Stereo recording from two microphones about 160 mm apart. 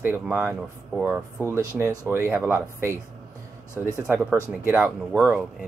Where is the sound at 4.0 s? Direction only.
10° right (ahead or behind).